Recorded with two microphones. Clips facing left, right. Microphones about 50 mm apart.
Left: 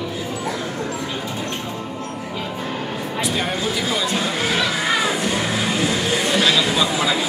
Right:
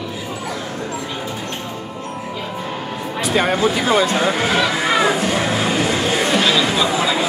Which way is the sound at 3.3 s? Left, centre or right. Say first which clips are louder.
Right 10 dB; right.